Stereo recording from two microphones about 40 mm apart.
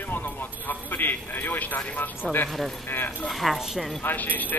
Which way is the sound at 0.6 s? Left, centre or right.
Left.